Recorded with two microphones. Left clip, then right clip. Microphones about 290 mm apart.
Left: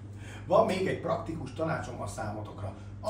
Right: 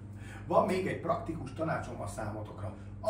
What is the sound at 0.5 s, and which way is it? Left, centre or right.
Speech, centre.